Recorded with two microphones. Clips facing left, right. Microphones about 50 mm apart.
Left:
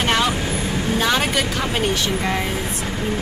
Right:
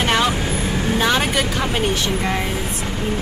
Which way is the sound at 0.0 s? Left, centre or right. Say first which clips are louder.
Right 1 dB; centre.